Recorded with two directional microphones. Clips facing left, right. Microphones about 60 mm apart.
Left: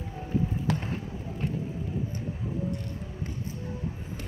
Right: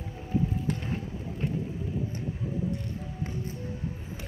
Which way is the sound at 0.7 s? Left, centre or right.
Left.